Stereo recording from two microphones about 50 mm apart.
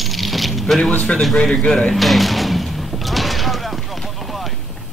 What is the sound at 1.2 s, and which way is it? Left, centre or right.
Speech, centre.